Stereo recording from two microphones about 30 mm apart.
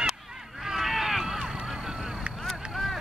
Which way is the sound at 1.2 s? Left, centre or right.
Centre.